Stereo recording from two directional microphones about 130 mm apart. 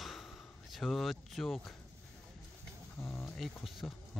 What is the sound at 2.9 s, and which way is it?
Speech, 20° left (ahead or behind).